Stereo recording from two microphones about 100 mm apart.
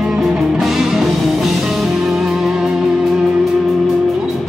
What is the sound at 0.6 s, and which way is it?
Music, centre (ahead or behind).